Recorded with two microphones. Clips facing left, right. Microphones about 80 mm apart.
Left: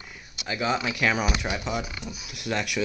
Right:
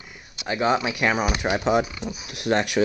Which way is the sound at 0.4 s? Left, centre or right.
Right.